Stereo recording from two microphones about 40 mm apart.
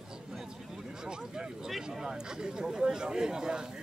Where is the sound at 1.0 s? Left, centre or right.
Right.